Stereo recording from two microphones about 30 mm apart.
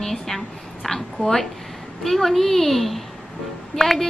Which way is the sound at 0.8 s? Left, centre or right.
Centre.